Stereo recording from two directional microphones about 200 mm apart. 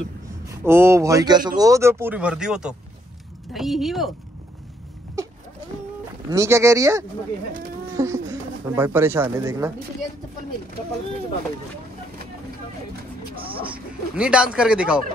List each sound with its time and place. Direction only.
0.7 s speech: 15° right (ahead or behind)
5.2 s a sound: 15° right (ahead or behind)
6.3 s speech: 15° right (ahead or behind)
14.1 s speech: 5° right (ahead or behind)